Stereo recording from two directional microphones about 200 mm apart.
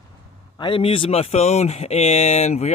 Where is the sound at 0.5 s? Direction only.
25° left (ahead or behind).